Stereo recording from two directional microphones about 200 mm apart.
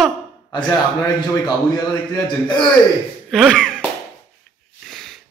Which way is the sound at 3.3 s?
Centre (ahead or behind).